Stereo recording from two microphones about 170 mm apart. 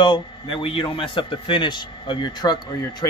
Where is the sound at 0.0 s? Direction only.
30° left (ahead or behind).